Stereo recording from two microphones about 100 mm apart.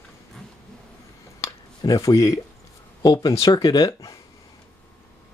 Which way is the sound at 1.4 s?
40° left (ahead or behind).